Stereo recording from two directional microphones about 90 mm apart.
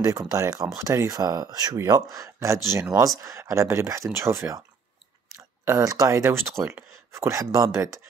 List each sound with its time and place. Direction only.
0.0 s speech: 40° right (ahead or behind)
5.7 s speech: 40° right (ahead or behind)